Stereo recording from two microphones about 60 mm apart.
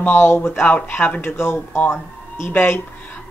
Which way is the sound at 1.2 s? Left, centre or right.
Left.